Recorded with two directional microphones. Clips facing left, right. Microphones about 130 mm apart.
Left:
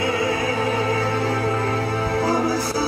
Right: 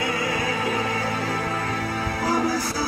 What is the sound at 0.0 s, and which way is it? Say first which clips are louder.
Music: left 4 dB; 30° left (ahead or behind).